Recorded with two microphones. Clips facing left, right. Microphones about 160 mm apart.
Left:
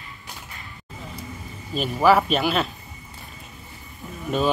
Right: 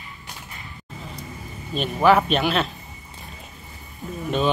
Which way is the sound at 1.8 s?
5° left (ahead or behind).